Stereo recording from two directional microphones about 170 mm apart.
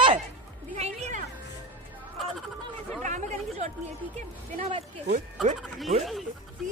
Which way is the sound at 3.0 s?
45° right (ahead or behind).